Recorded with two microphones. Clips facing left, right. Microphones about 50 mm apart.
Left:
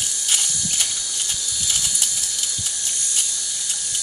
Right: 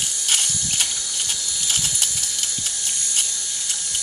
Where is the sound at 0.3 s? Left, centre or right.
Right.